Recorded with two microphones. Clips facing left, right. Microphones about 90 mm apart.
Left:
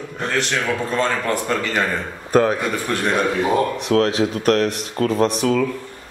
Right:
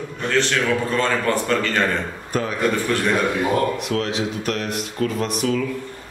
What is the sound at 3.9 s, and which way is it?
Speech, 45° left (ahead or behind).